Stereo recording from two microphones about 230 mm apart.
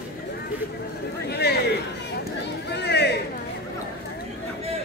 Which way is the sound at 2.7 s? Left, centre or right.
Left.